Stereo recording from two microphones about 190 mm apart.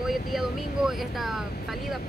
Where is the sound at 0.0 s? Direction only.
Centre (ahead or behind).